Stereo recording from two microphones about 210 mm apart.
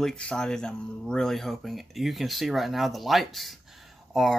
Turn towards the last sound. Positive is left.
turn(degrees=0)  # may be behind; listen again after turning